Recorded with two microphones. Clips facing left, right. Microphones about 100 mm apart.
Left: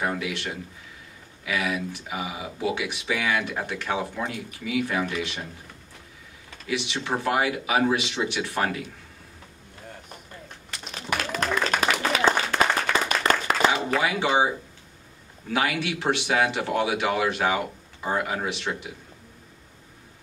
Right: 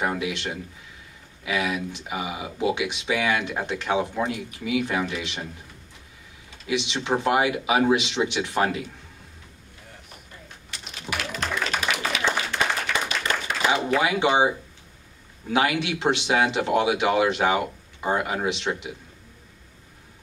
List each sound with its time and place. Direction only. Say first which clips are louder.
0.0 s speech: right 2 dB; 20° right (ahead or behind)
6.7 s speech: right 3 dB; 20° right (ahead or behind)
10.7 s applause: left 3 dB; 45° left (ahead or behind)
13.2 s clapping: left 4 dB; 50° left (ahead or behind)
14.0 s speech: right 2 dB; 20° right (ahead or behind)
15.5 s speech: right 3 dB; 20° right (ahead or behind)